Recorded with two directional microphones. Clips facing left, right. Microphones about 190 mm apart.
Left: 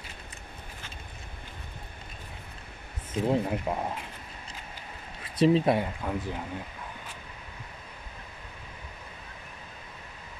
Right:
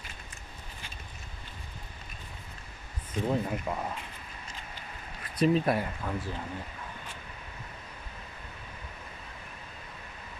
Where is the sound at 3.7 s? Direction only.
20° left (ahead or behind).